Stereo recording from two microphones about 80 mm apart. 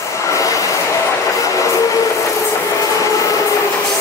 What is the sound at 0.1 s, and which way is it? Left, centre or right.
Train, left.